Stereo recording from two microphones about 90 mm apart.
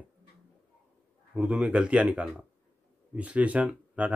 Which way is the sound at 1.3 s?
15° right (ahead or behind).